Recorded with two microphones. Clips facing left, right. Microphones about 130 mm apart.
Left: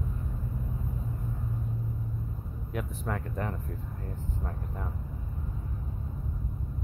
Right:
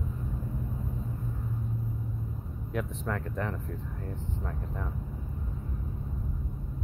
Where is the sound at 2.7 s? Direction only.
5° left (ahead or behind).